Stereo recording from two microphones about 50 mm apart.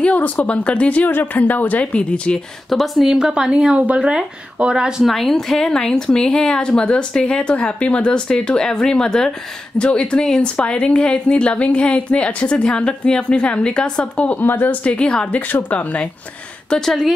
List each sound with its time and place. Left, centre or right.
0.0 s a woman's voice: left
2.7 s a woman's voice: centre
5.0 s a woman's voice: centre
14.4 s a woman's voice: left
15.4 s a woman's voice: left
16.8 s a woman's voice: centre